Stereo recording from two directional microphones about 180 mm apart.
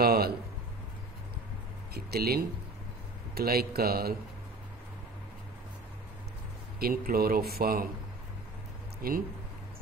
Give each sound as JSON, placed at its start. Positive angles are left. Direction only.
{"t": 0.0, "sound": "a sound", "side_deg": -60}
{"t": 2.0, "sound": "speech", "side_deg": -60}
{"t": 6.8, "sound": "speech", "side_deg": -55}
{"t": 9.0, "sound": "speech", "side_deg": -55}